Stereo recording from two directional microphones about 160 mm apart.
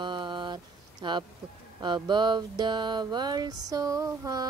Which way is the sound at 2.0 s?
30° right (ahead or behind).